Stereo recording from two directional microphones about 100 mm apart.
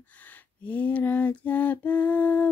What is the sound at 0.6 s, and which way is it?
Lullaby, 15° left (ahead or behind).